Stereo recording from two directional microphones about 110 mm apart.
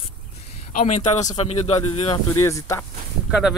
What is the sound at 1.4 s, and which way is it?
Speech, 75° left (ahead or behind).